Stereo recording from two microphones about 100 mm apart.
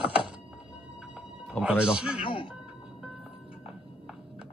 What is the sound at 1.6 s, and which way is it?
Speech, 10° right (ahead or behind).